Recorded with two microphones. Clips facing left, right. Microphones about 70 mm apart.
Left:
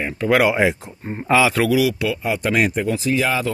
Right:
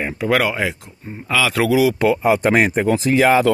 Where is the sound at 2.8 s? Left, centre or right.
Right.